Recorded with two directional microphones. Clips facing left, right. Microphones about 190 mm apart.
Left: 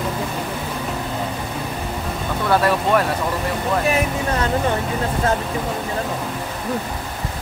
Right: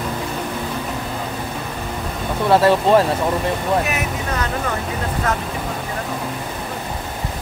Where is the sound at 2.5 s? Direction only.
30° right (ahead or behind).